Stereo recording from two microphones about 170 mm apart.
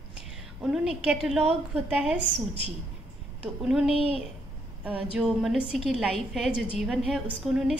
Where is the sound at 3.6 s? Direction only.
5° right (ahead or behind).